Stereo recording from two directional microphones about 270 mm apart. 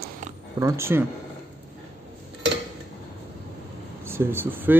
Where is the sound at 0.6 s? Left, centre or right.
Centre.